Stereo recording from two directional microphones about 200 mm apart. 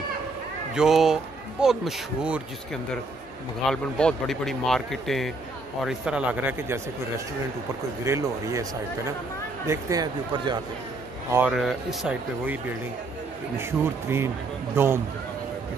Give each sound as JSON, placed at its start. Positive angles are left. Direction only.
{"t": 0.7, "sound": "speech", "side_deg": 0}
{"t": 8.0, "sound": "speech", "side_deg": -15}
{"t": 11.3, "sound": "speech", "side_deg": -5}
{"t": 13.6, "sound": "speech", "side_deg": -10}